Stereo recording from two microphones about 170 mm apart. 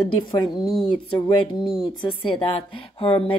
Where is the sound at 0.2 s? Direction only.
25° left (ahead or behind).